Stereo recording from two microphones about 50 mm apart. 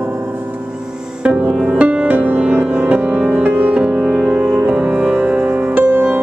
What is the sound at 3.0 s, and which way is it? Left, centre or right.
Music, right.